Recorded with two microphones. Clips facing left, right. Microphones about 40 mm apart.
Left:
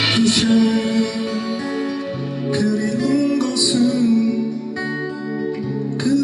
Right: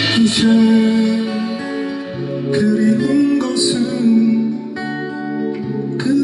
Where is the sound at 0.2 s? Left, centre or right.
Centre.